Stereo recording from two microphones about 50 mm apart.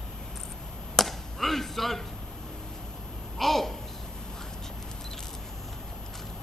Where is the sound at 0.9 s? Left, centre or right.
Centre.